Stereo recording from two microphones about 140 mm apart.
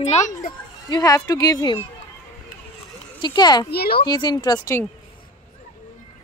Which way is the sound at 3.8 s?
90° left.